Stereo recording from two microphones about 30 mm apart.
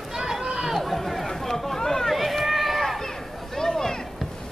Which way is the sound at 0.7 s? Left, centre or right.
Centre.